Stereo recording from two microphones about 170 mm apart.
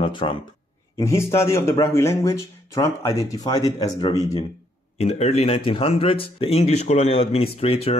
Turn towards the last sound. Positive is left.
turn(degrees=35)  # may be behind; listen again after turning